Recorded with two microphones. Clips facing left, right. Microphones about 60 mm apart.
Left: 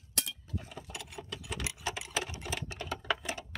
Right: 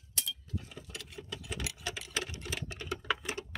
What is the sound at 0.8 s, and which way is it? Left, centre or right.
Sewing machine, centre.